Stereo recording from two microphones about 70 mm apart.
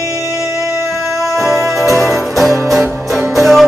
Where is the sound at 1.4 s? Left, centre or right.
Centre.